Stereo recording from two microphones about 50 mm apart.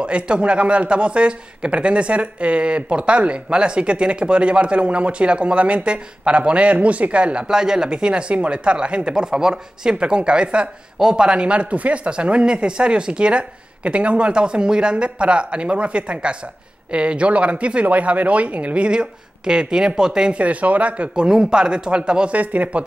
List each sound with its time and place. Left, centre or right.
0.0 s a man's voice: right
20.3 s a man's voice: right
21.1 s a man's voice: centre